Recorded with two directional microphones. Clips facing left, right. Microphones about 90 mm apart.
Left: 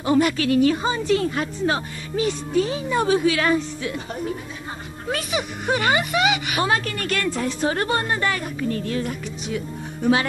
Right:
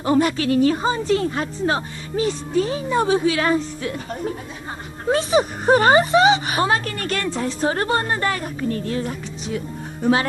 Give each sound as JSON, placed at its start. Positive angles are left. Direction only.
{"t": 0.0, "sound": "speech", "side_deg": -35}
{"t": 5.1, "sound": "speech", "side_deg": -35}